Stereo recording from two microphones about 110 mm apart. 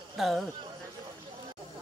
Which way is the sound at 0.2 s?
Centre (ahead or behind).